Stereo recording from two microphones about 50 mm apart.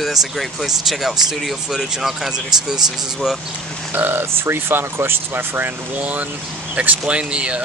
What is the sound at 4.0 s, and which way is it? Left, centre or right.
Speech, right.